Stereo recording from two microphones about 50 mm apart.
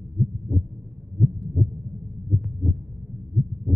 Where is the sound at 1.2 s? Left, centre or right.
Right.